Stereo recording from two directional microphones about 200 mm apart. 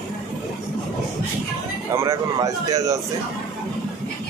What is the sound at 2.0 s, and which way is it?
Speech, 15° right (ahead or behind).